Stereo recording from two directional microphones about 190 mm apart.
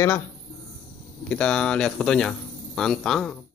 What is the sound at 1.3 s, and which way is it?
Speech, 5° left (ahead or behind).